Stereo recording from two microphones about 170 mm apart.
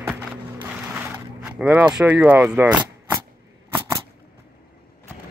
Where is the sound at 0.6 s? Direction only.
10° right (ahead or behind).